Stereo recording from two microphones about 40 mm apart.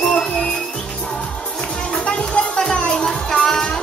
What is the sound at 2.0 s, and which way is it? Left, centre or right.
Music, left.